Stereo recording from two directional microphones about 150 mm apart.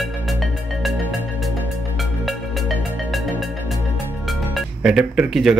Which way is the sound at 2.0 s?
Centre (ahead or behind).